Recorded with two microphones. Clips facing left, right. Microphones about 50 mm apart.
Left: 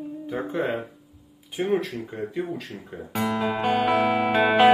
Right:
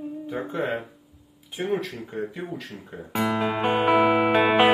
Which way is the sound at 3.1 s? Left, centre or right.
Centre.